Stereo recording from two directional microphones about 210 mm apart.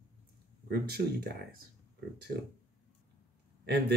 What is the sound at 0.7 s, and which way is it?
Speech, 50° right (ahead or behind).